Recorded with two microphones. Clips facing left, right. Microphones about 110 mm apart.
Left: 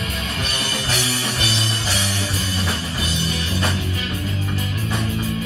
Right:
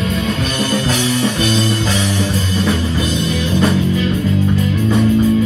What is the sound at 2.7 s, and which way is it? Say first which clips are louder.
Music: right 9 dB; 30° right (ahead or behind).